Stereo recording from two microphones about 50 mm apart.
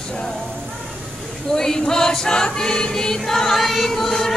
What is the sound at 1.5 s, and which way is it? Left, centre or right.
Choir, centre.